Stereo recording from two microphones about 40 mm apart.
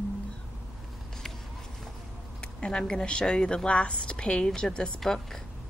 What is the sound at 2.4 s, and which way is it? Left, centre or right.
A woman's voice, left.